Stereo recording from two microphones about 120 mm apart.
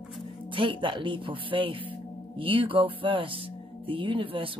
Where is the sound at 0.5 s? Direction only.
45° right (ahead or behind).